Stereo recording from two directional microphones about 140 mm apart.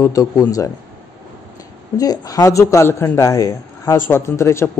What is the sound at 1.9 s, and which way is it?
Speech, 25° left (ahead or behind).